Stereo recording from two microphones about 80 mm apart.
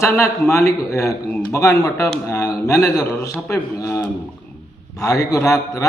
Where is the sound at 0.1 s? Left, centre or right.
Left.